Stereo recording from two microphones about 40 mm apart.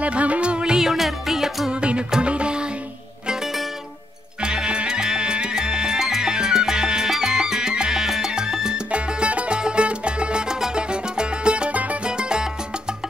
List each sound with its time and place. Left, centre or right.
0.0 s music: right
0.8 s music: centre
1.7 s music: right
4.4 s music: right
12.0 s salsa music: right